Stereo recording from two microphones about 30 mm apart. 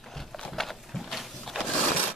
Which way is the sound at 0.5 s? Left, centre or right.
Centre.